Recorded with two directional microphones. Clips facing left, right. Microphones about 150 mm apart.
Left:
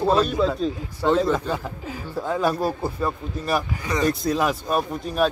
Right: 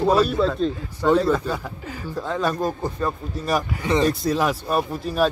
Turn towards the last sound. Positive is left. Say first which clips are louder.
# right 1 dB
turn(degrees=0)  # may be behind; listen again after turning